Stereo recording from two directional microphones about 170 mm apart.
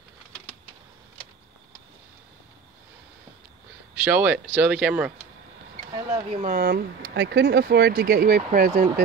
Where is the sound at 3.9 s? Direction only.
10° right (ahead or behind).